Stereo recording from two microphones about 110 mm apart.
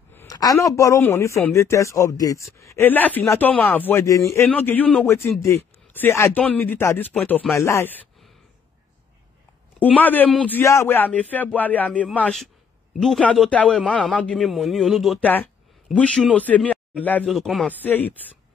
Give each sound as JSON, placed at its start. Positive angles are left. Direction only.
{"t": 0.3, "sound": "speech", "side_deg": 35}
{"t": 2.9, "sound": "speech", "side_deg": 15}
{"t": 7.5, "sound": "speech", "side_deg": 25}
{"t": 9.8, "sound": "speech", "side_deg": 15}
{"t": 10.6, "sound": "speech", "side_deg": 25}
{"t": 13.4, "sound": "a man's voice", "side_deg": 10}
{"t": 15.1, "sound": "a man's voice", "side_deg": 15}
{"t": 17.3, "sound": "a man's voice", "side_deg": 0}
{"t": 17.6, "sound": "speech", "side_deg": 15}